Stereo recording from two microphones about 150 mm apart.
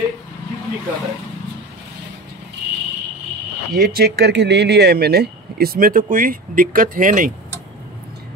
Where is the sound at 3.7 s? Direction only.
85° right; by 7.3 s 65° right (ahead or behind).